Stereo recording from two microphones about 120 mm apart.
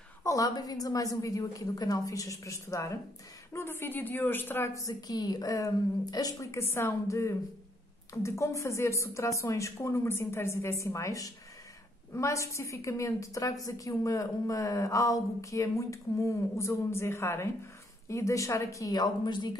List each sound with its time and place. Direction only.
0.2 s a woman's voice: 25° left (ahead or behind)